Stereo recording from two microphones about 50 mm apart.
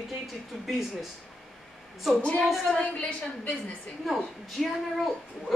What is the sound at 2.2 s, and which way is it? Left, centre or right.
Speech, left.